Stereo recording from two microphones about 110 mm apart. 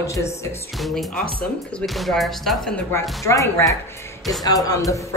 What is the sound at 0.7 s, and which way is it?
Speech, centre (ahead or behind).